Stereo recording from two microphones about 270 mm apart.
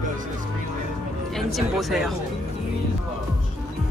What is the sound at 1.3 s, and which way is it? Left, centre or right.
Speech, centre.